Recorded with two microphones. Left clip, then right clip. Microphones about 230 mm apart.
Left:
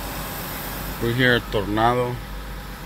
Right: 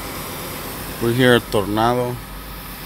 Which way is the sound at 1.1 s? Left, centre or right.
Right.